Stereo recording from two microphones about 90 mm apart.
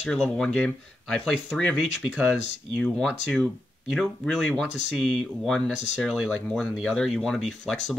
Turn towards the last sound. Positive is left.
turn(degrees=5)  # may be behind; listen again after turning